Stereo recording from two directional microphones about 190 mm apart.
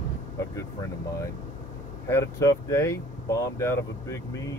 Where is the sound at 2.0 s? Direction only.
15° left (ahead or behind).